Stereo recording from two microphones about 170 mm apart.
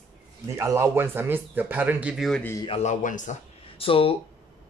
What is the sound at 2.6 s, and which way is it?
Speech, 40° left (ahead or behind).